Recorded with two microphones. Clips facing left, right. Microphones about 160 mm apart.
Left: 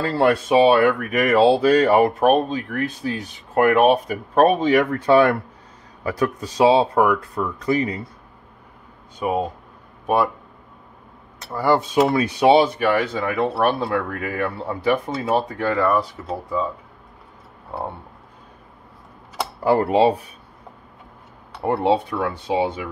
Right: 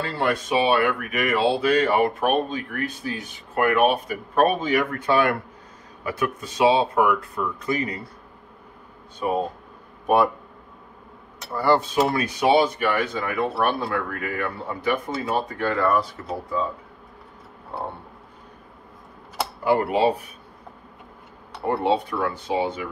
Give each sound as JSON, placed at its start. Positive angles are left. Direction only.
{"t": 0.0, "sound": "speech", "side_deg": 40}
{"t": 9.2, "sound": "speech", "side_deg": 10}
{"t": 11.5, "sound": "speech", "side_deg": 5}
{"t": 11.9, "sound": "speech", "side_deg": 25}
{"t": 19.6, "sound": "speech", "side_deg": 35}
{"t": 21.6, "sound": "speech", "side_deg": 20}